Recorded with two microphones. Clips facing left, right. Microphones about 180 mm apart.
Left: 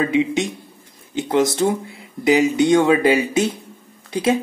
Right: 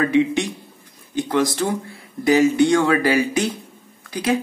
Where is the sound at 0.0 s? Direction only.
20° left (ahead or behind).